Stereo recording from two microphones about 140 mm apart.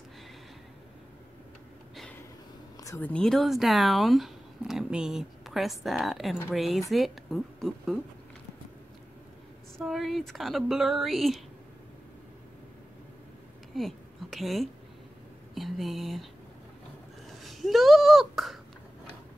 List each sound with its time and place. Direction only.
3.0 s speech: 5° left (ahead or behind)
9.8 s speech: centre (ahead or behind)
13.7 s a woman's voice: centre (ahead or behind)
17.4 s speech: centre (ahead or behind)